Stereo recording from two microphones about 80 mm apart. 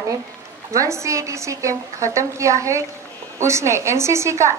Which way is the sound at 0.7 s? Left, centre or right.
Right.